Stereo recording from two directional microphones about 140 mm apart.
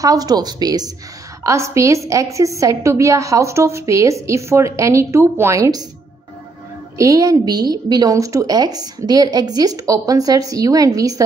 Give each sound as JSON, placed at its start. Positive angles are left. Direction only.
{"t": 0.0, "sound": "a woman's voice", "side_deg": -25}
{"t": 7.0, "sound": "a woman's voice", "side_deg": -25}